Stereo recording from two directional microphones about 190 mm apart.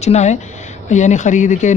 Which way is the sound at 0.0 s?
35° left (ahead or behind).